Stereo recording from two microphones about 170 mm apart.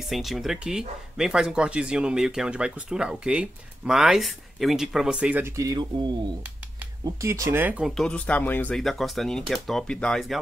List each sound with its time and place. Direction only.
0.1 s speech: centre (ahead or behind)
5.6 s speech: 25° right (ahead or behind); by 7.9 s 10° right (ahead or behind)
7.9 s speech: 5° left (ahead or behind)